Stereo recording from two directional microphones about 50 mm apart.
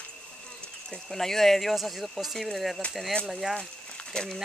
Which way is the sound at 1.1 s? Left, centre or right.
Centre.